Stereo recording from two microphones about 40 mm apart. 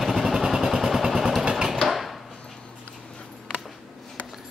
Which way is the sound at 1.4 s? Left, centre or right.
Centre.